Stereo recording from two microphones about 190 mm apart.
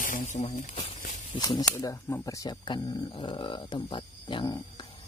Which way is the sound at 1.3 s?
20° left (ahead or behind).